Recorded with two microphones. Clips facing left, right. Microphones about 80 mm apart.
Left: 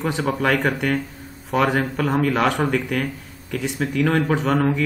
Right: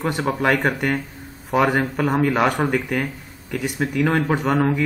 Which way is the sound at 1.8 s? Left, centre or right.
Centre.